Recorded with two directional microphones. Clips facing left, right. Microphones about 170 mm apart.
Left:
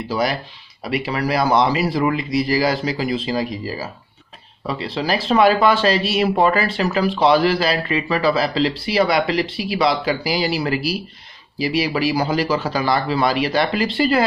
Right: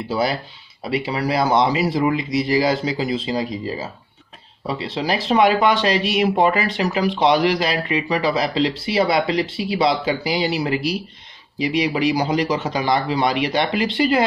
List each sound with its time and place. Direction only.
0.1 s speech: 25° right (ahead or behind)